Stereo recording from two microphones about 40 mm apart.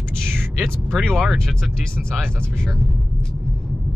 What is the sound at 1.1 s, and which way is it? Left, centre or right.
Speech, centre.